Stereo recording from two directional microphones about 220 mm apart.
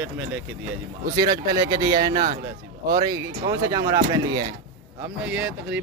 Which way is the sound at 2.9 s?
20° right (ahead or behind).